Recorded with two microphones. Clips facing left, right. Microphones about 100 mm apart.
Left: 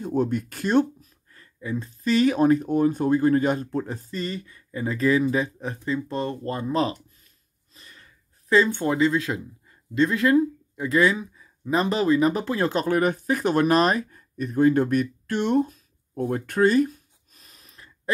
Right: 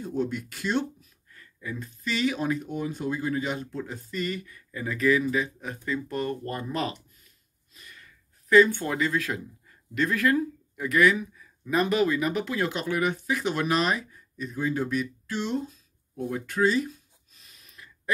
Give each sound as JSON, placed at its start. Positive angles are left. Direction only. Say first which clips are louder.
{"t": 0.0, "sound": "speech", "louder": "left 5 dB", "side_deg": 45}